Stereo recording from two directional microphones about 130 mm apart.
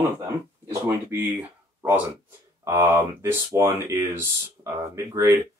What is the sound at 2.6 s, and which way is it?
Speech, 25° right (ahead or behind).